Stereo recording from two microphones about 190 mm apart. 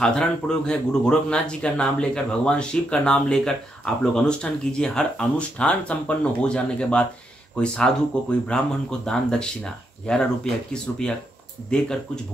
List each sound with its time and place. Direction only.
0.0 s speech: 5° left (ahead or behind)